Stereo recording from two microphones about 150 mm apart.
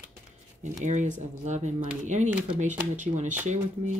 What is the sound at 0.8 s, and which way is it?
Speech, 55° right (ahead or behind).